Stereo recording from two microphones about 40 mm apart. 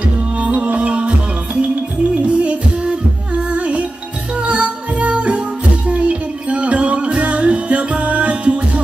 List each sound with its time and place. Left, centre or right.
0.4 s music: right
2.9 s music: right
3.5 s music: right